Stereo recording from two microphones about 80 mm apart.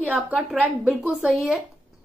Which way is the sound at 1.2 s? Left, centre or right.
Centre.